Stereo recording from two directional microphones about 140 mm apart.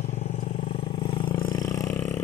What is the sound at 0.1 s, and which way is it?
Vehicle, 55° left (ahead or behind).